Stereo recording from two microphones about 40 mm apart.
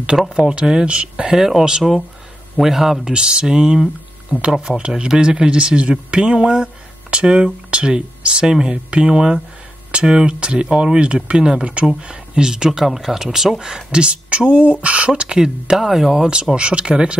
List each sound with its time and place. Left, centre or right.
0.1 s speech: centre
0.5 s speech: right
3.1 s speech: right; by 16.3 s centre
16.5 s speech: right